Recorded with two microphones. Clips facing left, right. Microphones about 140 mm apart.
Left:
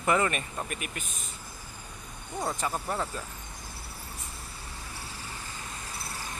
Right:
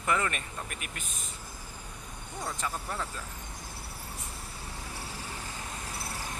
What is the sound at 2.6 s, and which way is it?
Speech, 30° left (ahead or behind).